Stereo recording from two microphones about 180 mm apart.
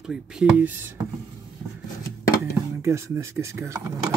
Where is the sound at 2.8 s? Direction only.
15° right (ahead or behind).